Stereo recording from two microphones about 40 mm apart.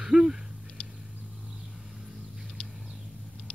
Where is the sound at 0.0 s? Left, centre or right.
Centre.